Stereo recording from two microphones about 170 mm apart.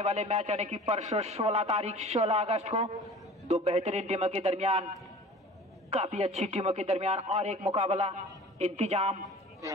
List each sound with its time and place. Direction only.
0.0 s a man's voice: 40° right (ahead or behind)
5.9 s a man's voice: 40° right (ahead or behind)